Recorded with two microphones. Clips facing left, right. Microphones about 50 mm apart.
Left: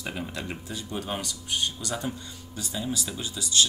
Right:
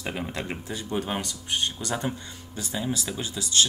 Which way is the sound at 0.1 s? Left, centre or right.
Right.